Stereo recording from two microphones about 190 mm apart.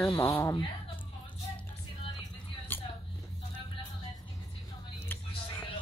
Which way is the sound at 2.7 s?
10° left (ahead or behind).